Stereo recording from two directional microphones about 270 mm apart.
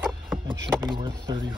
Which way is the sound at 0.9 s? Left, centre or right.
Centre.